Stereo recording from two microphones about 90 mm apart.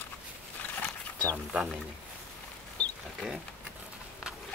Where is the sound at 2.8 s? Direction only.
15° left (ahead or behind).